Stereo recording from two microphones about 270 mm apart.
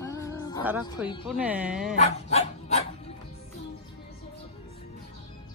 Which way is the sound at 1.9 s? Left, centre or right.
Left.